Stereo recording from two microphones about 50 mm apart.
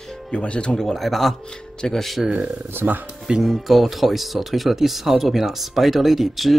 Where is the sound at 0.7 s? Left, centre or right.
Centre.